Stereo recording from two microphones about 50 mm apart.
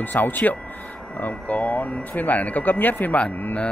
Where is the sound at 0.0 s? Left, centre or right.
Left.